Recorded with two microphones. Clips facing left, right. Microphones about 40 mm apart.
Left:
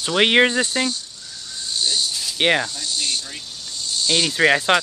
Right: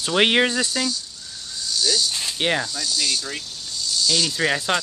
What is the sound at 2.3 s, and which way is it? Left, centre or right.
Speech, left.